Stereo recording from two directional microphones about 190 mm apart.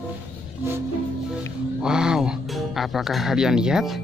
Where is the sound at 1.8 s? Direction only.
5° right (ahead or behind).